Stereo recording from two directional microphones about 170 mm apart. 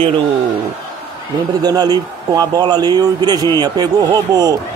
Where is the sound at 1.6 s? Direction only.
25° right (ahead or behind).